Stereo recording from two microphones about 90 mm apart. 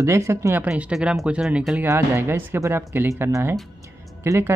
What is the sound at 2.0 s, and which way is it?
Speech, 25° right (ahead or behind).